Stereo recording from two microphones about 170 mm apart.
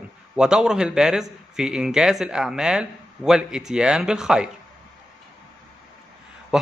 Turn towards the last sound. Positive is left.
turn(degrees=0)  # may be behind; listen again after turning